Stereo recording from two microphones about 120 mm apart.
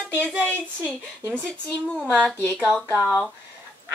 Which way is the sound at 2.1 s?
10° left (ahead or behind).